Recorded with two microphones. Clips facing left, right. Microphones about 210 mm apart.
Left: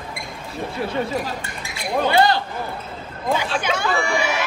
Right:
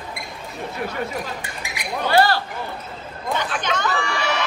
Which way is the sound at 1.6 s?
15° right (ahead or behind).